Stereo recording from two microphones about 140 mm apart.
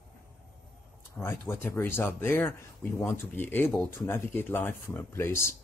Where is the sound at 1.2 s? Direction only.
20° left (ahead or behind).